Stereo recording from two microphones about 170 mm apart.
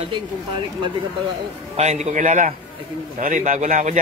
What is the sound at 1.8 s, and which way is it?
A man's voice, 40° right (ahead or behind).